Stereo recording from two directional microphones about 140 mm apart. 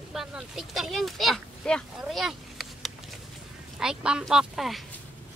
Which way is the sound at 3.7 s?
5° right (ahead or behind).